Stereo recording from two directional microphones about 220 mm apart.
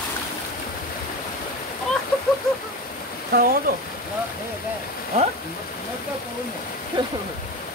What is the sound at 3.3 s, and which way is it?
Speech, 40° right (ahead or behind).